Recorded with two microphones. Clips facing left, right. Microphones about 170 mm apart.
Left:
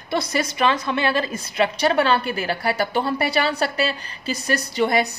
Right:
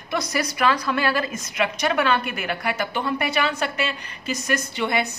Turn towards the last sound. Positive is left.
turn(degrees=40)  # may be behind; listen again after turning